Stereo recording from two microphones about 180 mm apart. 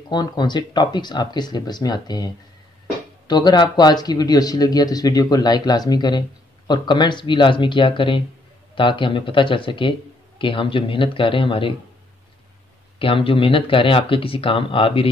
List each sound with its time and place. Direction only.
0.1 s a man's voice: 25° left (ahead or behind)
13.0 s a man's voice: 30° left (ahead or behind)